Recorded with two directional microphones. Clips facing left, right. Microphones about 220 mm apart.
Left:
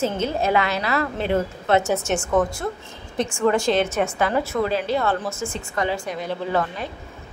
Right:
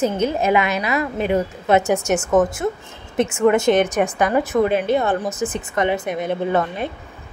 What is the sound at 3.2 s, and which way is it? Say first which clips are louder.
A woman's voice: right 4 dB; 20° right (ahead or behind).